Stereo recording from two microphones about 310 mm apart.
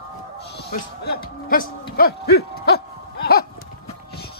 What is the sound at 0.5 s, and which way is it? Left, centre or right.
Speech, left.